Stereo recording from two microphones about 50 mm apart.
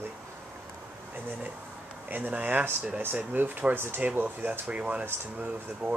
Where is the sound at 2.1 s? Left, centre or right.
Right.